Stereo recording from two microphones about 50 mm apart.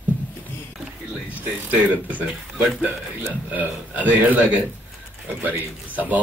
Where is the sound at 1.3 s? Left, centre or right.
Right.